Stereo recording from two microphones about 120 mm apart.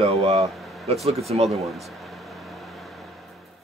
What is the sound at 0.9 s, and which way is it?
Speech, 60° right (ahead or behind).